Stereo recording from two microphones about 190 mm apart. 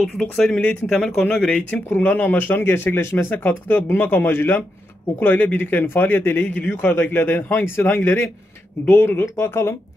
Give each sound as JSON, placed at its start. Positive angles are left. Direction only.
{"t": 0.0, "sound": "speech", "side_deg": 5}